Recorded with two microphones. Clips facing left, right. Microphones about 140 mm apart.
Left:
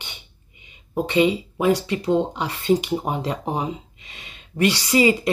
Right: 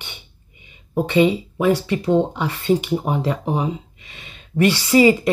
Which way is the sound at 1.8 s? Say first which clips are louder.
Right 3 dB; 25° left (ahead or behind).